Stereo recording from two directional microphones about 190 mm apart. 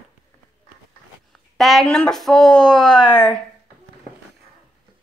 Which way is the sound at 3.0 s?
20° left (ahead or behind).